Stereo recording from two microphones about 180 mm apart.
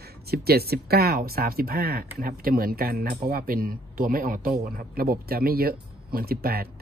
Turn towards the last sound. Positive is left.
turn(degrees=-55)  # may be behind; listen again after turning